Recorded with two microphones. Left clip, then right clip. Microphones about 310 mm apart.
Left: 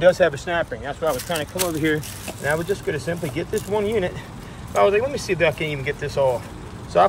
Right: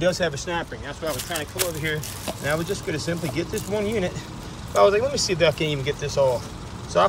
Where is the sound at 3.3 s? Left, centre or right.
Right.